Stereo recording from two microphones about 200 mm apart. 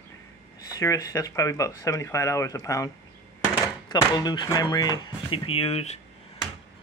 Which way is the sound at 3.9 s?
20° left (ahead or behind).